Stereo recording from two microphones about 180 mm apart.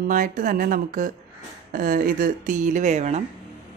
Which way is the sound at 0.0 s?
50° right (ahead or behind).